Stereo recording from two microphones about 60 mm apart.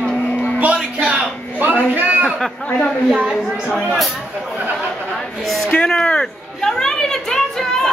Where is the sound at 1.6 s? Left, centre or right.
Right.